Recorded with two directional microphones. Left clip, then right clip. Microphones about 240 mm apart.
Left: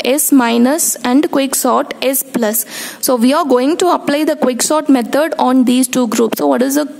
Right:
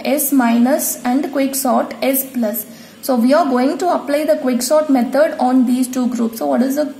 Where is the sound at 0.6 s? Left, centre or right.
Left.